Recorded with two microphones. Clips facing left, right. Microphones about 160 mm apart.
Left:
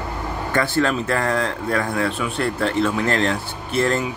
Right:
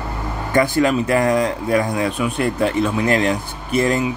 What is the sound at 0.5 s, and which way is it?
Speech, 15° right (ahead or behind).